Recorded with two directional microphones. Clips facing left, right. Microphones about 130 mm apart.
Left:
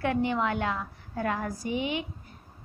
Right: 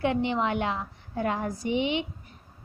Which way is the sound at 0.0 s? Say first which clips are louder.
Right 1 dB; 20° right (ahead or behind).